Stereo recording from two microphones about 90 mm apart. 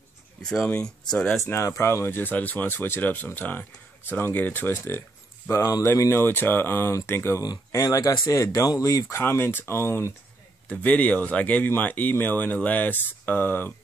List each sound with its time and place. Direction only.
0.4 s speech: 5° left (ahead or behind)
1.4 s speech: 35° left (ahead or behind)
7.7 s speech: 40° left (ahead or behind)
10.7 s speech: 15° left (ahead or behind)